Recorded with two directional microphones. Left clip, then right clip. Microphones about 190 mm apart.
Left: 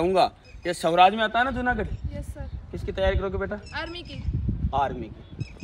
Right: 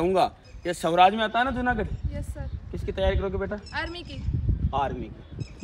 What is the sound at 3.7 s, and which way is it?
Speech, 10° right (ahead or behind).